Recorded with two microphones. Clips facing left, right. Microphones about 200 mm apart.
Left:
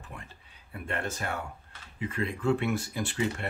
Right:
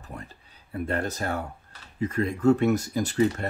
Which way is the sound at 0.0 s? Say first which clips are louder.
Right 5 dB; 40° right (ahead or behind).